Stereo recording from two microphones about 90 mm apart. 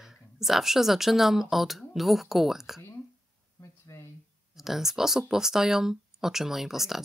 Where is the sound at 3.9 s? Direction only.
30° left (ahead or behind).